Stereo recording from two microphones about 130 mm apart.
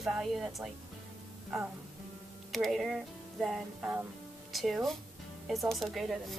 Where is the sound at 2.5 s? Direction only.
Centre (ahead or behind).